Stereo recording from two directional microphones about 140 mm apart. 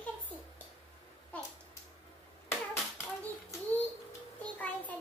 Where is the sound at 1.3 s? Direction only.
10° left (ahead or behind).